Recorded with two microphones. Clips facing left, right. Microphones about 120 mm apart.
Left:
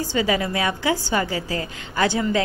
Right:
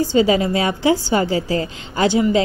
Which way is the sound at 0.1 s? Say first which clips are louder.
Right 4 dB; 25° right (ahead or behind).